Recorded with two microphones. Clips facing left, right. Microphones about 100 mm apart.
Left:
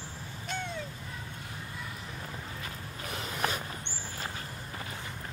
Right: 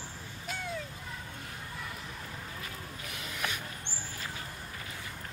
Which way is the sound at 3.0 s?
35° left (ahead or behind).